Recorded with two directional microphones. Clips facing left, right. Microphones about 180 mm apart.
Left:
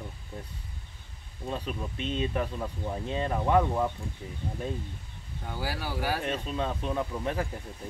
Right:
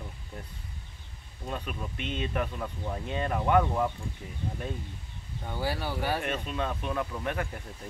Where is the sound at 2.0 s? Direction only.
30° left (ahead or behind).